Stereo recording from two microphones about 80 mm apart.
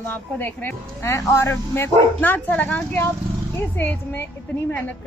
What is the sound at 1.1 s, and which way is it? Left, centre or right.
A woman's voice, left.